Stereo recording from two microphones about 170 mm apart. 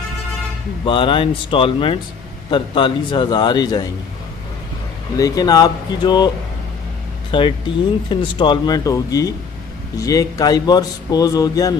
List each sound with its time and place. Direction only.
0.8 s a man's voice: 30° left (ahead or behind)
5.1 s a man's voice: 20° left (ahead or behind)